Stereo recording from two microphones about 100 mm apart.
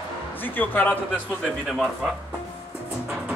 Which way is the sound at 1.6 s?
5° right (ahead or behind).